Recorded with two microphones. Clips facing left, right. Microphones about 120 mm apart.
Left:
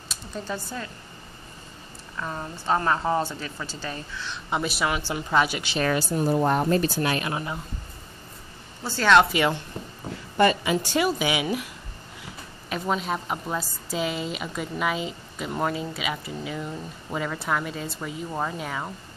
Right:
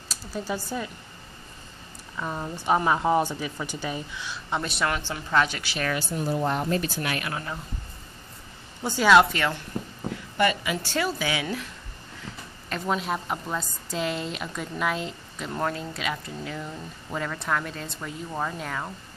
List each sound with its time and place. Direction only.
0.1 s speech: 5° right (ahead or behind)
2.1 s speech: 5° right (ahead or behind)
4.5 s speech: 5° left (ahead or behind)
5.7 s speech: 30° left (ahead or behind)
6.2 s speech: 50° left (ahead or behind); by 7.5 s 20° left (ahead or behind)
8.8 s speech: 10° right (ahead or behind)
9.3 s speech: 15° left (ahead or behind)
10.3 s a woman's voice: 35° left (ahead or behind)
10.8 s a woman's voice: 15° left (ahead or behind)